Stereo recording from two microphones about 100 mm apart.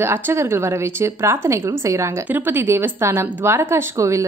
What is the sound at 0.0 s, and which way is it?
Speech, 25° right (ahead or behind).